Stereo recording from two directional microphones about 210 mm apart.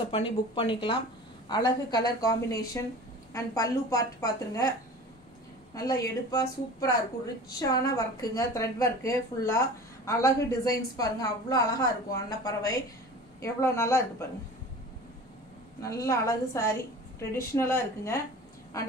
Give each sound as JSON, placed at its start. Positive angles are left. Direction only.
{"t": 0.1, "sound": "a woman's voice", "side_deg": 25}
{"t": 5.8, "sound": "speech", "side_deg": 15}
{"t": 15.8, "sound": "speech", "side_deg": 15}